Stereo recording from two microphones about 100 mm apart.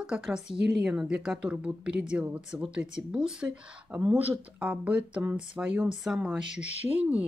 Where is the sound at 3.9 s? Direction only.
20° right (ahead or behind).